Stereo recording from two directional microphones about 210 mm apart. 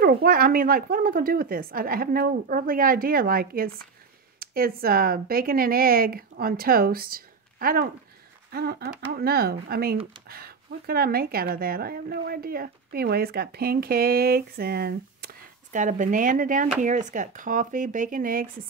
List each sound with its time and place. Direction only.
0.0 s speech: 45° right (ahead or behind)